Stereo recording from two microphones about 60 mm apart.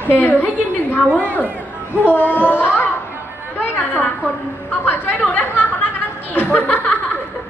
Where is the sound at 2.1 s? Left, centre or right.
Left.